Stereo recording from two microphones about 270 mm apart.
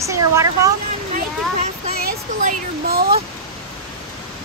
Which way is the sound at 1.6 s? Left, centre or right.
Right.